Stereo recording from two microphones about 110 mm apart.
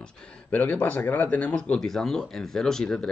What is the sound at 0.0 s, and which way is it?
Speech, 10° left (ahead or behind).